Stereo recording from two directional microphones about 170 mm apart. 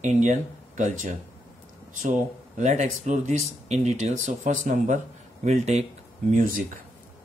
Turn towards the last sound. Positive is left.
turn(degrees=-55)  # may be behind; listen again after turning